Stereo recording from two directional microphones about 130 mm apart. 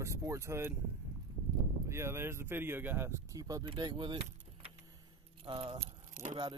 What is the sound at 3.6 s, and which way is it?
Keys jangling, 35° right (ahead or behind).